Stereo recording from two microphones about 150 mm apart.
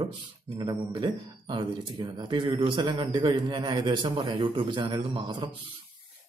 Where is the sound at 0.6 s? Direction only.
30° right (ahead or behind).